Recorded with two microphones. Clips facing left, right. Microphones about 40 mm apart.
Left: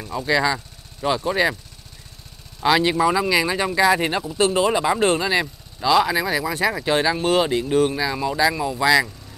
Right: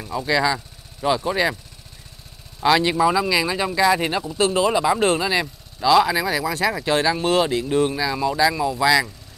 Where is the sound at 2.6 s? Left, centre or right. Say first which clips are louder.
Even; centre.